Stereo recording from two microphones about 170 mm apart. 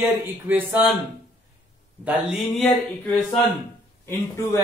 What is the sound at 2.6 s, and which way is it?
Speech, 10° left (ahead or behind).